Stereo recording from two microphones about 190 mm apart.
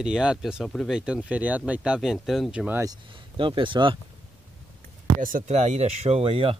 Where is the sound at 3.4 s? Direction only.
25° right (ahead or behind).